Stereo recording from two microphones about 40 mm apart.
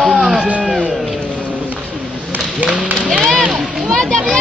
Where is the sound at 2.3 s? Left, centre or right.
Right.